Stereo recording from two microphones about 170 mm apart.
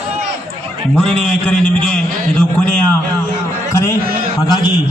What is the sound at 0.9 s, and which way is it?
A man's voice, 5° left (ahead or behind).